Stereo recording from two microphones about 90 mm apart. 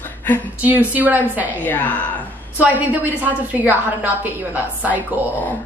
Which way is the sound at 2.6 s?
15° right (ahead or behind).